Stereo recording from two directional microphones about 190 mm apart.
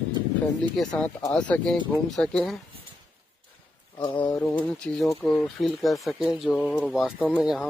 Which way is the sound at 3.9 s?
25° left (ahead or behind).